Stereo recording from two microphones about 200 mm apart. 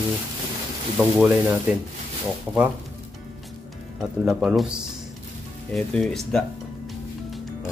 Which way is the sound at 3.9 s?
Centre (ahead or behind).